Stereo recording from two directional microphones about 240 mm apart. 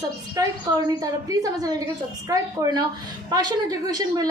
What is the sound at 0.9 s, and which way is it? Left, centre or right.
A woman's voice, centre.